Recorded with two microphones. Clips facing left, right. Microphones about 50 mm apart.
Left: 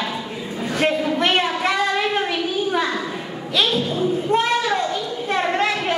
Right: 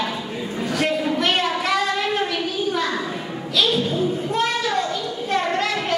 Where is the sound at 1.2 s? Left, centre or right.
Left.